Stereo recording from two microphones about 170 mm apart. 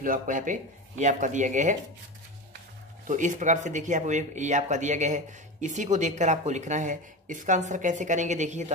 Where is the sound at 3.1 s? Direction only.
45° right (ahead or behind).